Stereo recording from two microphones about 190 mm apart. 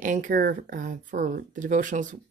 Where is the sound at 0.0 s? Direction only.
45° right (ahead or behind).